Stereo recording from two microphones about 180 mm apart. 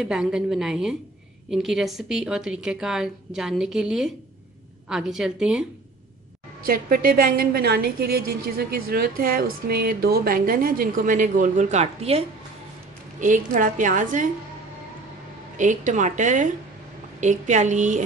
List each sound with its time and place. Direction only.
0.0 s a woman's voice: 5° right (ahead or behind)
6.6 s a woman's voice: 55° right (ahead or behind); by 12.2 s 35° right (ahead or behind)
13.2 s a woman's voice: 45° right (ahead or behind)
15.5 s a woman's voice: 45° right (ahead or behind)